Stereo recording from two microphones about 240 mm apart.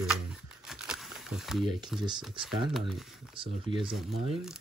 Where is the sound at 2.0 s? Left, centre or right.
Centre.